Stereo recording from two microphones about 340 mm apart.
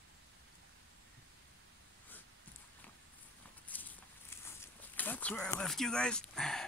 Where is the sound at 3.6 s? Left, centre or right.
Centre.